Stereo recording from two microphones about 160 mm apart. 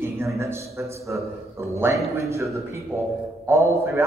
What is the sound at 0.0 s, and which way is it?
A man's voice, 15° right (ahead or behind).